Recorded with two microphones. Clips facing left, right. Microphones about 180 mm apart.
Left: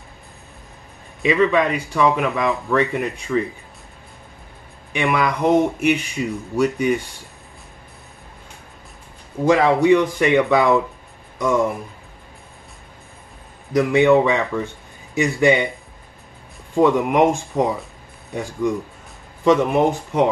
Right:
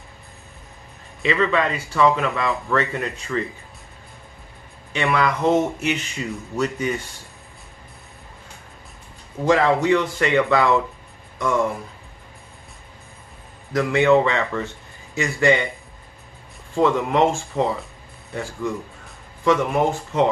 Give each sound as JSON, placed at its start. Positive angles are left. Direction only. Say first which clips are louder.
{"t": 1.2, "sound": "speech", "louder": "left 4 dB", "side_deg": 15}
{"t": 4.9, "sound": "speech", "louder": "left 1 dB", "side_deg": 15}
{"t": 9.4, "sound": "speech", "louder": "left 3 dB", "side_deg": 10}
{"t": 13.7, "sound": "speech", "louder": "left 2 dB", "side_deg": 15}
{"t": 16.7, "sound": "speech", "louder": "left 3 dB", "side_deg": 15}